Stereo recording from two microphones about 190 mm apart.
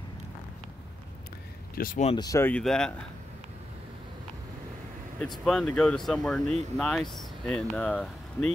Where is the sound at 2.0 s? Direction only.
20° left (ahead or behind); by 2.9 s 5° left (ahead or behind).